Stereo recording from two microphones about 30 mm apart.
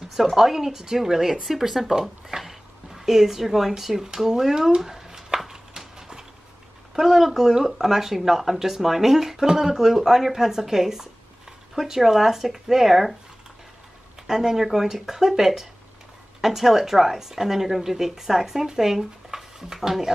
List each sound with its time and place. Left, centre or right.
0.4 s speech: centre
4.0 s speech: centre
4.7 s a sound: centre
7.0 s speech: centre
14.2 s speech: centre